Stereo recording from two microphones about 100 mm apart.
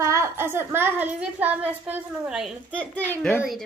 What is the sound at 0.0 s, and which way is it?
A child's voice, 30° right (ahead or behind).